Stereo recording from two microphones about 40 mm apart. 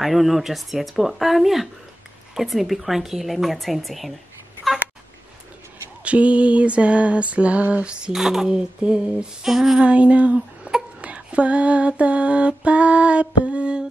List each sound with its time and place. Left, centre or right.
0.0 s speech: centre
6.0 s lullaby: right
8.1 s speech: centre
9.5 s speech: centre
9.8 s lullaby: right